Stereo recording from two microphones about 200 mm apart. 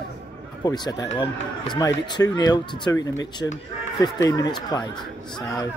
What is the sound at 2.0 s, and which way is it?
Speech, 20° left (ahead or behind).